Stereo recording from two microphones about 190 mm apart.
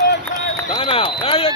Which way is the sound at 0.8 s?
30° left (ahead or behind).